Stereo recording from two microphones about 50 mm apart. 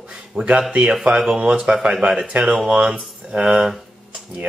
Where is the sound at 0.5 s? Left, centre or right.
Right.